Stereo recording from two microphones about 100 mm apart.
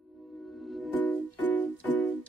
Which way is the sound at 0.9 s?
15° left (ahead or behind).